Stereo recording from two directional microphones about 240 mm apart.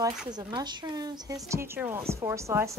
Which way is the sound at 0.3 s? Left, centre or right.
Centre.